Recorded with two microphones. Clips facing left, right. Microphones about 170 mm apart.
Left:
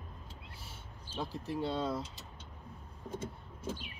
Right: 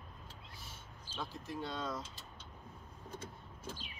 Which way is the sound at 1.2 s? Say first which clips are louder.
Left 6 dB; 35° left (ahead or behind).